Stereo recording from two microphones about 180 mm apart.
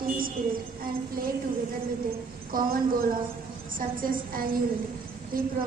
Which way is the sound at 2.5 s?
50° right (ahead or behind).